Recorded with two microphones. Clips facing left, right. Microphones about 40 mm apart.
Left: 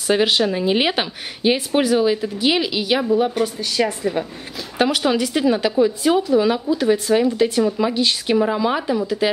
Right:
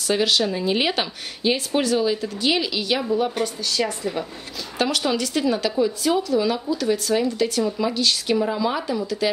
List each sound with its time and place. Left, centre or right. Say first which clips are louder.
0.1 s a woman's voice: left 4 dB; left